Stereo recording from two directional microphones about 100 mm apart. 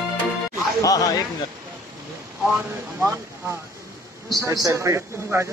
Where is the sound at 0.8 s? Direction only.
35° left (ahead or behind).